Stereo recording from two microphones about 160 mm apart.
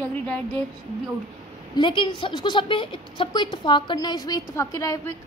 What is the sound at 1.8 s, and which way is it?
A woman's voice, 30° left (ahead or behind).